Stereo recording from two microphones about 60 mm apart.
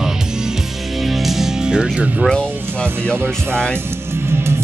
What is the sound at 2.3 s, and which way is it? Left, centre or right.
Speech, centre.